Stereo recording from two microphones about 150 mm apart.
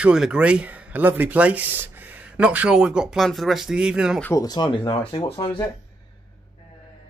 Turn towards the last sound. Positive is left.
turn(degrees=25)  # may be behind; listen again after turning